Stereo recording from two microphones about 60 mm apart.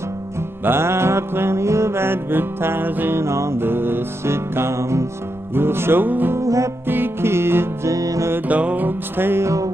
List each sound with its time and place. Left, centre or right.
0.7 s music: right
5.5 s music: right
6.3 s music: right
6.9 s music: right
7.9 s music: right
8.5 s music: right